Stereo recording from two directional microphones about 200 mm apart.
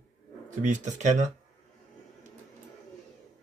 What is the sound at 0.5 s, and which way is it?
Speech, 40° right (ahead or behind).